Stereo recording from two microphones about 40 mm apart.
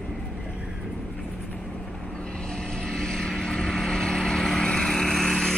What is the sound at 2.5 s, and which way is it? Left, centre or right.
Vehicle, centre.